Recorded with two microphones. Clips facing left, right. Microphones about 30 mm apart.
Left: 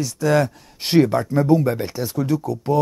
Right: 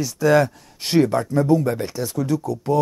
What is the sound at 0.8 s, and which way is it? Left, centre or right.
Speech, centre.